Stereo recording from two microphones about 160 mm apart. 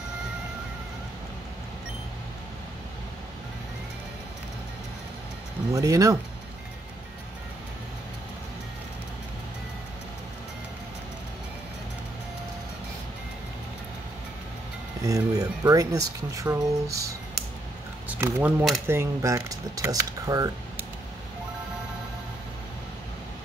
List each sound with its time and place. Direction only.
5.7 s speech: 20° right (ahead or behind)
15.0 s speech: 20° right (ahead or behind); by 18.8 s 5° right (ahead or behind)
18.9 s speech: 15° right (ahead or behind)